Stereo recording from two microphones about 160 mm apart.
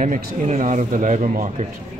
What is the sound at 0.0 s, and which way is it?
A man's voice, 50° right (ahead or behind).